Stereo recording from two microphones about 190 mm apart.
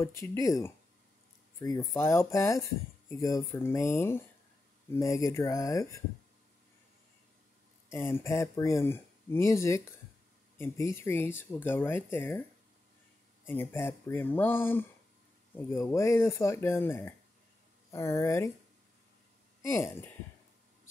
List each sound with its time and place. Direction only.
0.0 s speech: 15° left (ahead or behind)
2.0 s speech: 15° left (ahead or behind)
7.9 s speech: 10° left (ahead or behind)
13.5 s speech: 10° left (ahead or behind)
19.7 s speech: 15° left (ahead or behind)